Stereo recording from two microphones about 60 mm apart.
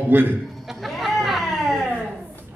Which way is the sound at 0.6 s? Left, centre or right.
Centre.